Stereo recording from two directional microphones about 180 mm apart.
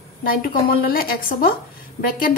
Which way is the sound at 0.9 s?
55° left (ahead or behind).